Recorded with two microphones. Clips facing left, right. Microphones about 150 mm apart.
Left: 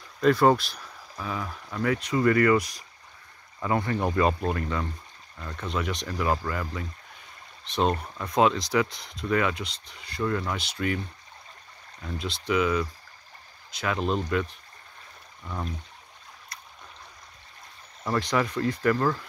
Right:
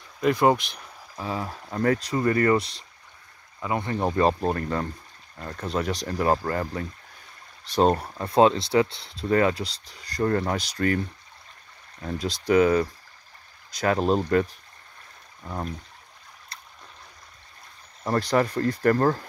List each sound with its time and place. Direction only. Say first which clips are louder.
0.2 s speech: even; 10° right (ahead or behind); by 11.0 s 40° right (ahead or behind)
12.0 s speech: right 4 dB; 40° right (ahead or behind)
16.5 s boat: right 1 dB; 30° right (ahead or behind)
18.1 s speech: right 3 dB; 40° right (ahead or behind)